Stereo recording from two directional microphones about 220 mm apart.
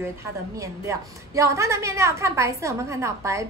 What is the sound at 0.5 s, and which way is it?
A woman's voice, 15° right (ahead or behind).